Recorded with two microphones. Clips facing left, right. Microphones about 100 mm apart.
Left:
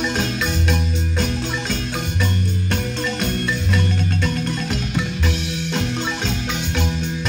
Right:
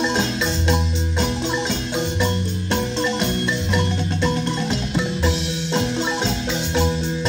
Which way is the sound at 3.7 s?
25° right (ahead or behind).